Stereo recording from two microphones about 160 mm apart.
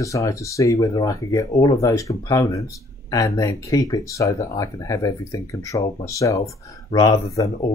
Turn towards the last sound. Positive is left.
turn(degrees=20)  # may be behind; listen again after turning